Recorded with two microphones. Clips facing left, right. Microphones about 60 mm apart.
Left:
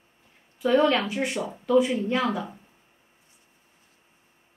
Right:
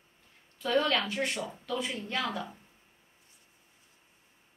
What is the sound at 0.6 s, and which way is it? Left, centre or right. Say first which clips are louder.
Speech: left 7 dB; centre.